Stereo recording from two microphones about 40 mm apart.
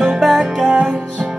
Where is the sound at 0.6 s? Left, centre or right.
Right.